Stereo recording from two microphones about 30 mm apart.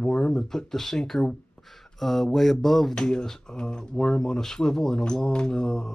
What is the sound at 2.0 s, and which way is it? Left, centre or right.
Speech, centre.